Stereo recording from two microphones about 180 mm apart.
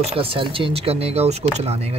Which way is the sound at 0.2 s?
30° right (ahead or behind).